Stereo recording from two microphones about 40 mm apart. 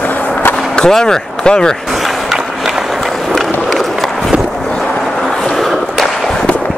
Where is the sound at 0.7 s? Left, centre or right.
Centre.